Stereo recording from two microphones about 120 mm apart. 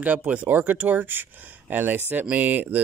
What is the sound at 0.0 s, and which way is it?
Speech, 10° right (ahead or behind).